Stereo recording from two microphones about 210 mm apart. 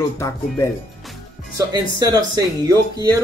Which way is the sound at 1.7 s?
15° right (ahead or behind).